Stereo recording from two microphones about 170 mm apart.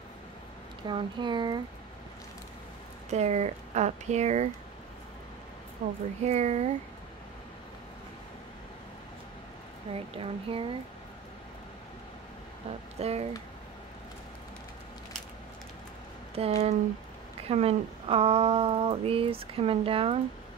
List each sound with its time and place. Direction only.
0.8 s speech: 25° right (ahead or behind)
3.1 s speech: 40° right (ahead or behind)
5.8 s speech: 40° right (ahead or behind)
9.9 s speech: 35° right (ahead or behind)
13.0 s speech: 35° right (ahead or behind)
16.3 s speech: 35° right (ahead or behind)